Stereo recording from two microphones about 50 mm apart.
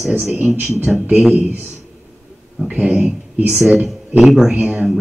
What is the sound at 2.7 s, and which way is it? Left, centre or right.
Speech, centre.